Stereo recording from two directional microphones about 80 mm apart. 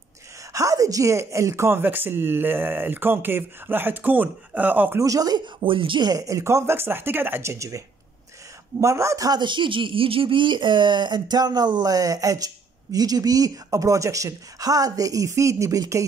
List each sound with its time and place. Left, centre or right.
0.5 s speech: right
4.9 s speech: right
5.6 s speech: right
6.1 s speech: right
9.4 s speech: right